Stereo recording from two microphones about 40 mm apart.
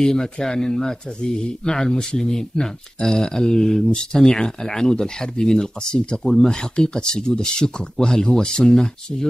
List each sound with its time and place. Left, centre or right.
0.0 s speech: centre